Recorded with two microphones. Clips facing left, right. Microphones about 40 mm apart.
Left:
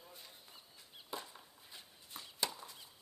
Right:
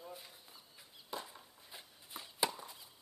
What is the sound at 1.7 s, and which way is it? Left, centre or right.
Shuffling cards, centre.